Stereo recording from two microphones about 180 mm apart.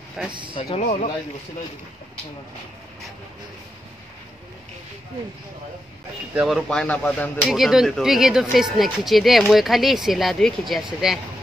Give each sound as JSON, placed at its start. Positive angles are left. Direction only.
{"t": 0.3, "sound": "speech", "side_deg": -25}
{"t": 0.6, "sound": "speech", "side_deg": 35}
{"t": 6.3, "sound": "speech", "side_deg": 0}